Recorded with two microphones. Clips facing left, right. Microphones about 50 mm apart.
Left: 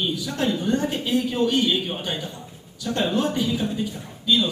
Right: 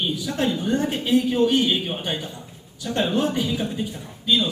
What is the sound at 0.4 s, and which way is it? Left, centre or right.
A man's voice, centre.